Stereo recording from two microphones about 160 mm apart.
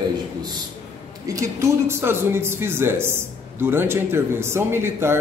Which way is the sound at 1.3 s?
20° right (ahead or behind).